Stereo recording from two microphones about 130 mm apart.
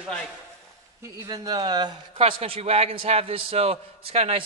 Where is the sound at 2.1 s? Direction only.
45° right (ahead or behind).